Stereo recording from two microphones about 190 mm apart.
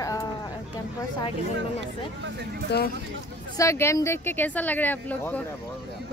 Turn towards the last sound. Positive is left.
turn(degrees=10)  # may be behind; listen again after turning